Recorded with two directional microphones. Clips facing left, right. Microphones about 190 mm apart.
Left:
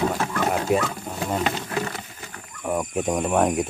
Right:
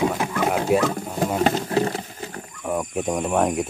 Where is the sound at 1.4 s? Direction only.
35° right (ahead or behind).